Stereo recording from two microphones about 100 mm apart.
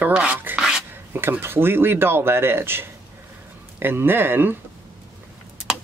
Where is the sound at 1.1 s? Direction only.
25° right (ahead or behind).